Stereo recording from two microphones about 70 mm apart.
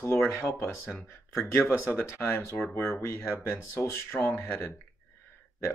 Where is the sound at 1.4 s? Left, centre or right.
Left.